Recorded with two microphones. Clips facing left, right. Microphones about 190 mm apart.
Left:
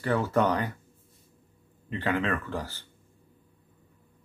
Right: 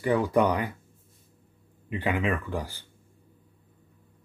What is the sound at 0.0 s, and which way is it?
Speech, 15° right (ahead or behind).